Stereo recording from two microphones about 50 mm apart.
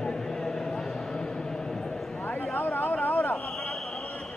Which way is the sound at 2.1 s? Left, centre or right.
Left.